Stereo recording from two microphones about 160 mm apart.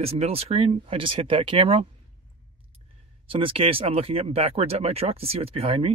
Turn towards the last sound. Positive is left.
turn(degrees=-35)  # may be behind; listen again after turning